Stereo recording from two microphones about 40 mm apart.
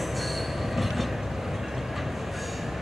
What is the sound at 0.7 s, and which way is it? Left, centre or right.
Train, centre.